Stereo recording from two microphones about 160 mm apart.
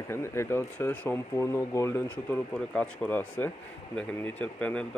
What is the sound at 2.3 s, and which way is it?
Speech, 5° left (ahead or behind).